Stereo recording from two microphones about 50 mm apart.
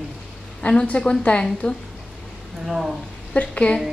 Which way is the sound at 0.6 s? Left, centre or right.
Centre.